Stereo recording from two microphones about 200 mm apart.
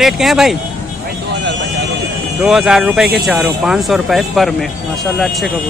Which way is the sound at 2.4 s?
Centre (ahead or behind).